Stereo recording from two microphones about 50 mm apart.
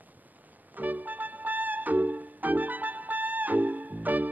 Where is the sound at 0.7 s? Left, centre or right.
Right.